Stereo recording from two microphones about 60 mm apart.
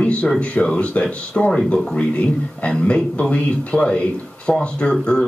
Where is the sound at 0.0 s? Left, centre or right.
Centre.